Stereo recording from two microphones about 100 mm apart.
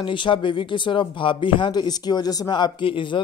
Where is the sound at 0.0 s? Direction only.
55° left (ahead or behind).